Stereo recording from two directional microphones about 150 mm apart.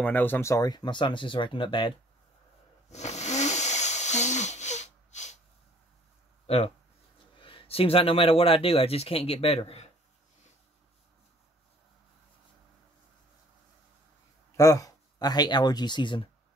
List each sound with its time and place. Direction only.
0.0 s speech: 10° left (ahead or behind); by 2.0 s 35° left (ahead or behind)
2.9 s a sound: 50° left (ahead or behind)
6.4 s speech: 45° left (ahead or behind)
14.6 s speech: 20° left (ahead or behind)